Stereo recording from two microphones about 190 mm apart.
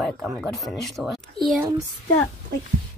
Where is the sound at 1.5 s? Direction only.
15° right (ahead or behind).